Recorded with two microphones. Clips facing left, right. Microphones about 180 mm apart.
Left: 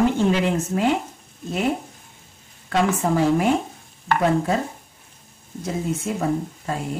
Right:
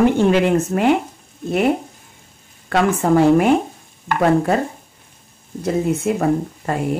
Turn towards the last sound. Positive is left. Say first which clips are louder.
# right 5 dB
turn(degrees=-65)  # may be behind; listen again after turning